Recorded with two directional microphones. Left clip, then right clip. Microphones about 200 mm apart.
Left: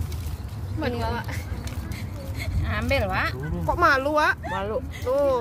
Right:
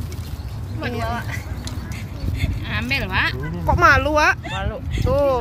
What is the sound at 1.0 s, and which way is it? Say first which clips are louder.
Speech: right 4 dB; 50° left (ahead or behind).